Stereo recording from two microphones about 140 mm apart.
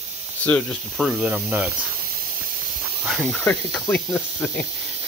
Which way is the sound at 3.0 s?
Centre (ahead or behind).